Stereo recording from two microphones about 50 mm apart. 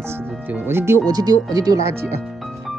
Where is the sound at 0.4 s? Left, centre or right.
Right.